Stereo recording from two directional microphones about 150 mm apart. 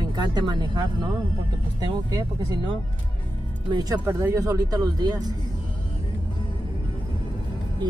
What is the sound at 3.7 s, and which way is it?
Speech, 25° right (ahead or behind).